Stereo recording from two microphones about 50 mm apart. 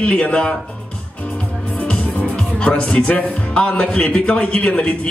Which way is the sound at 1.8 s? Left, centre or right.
Left.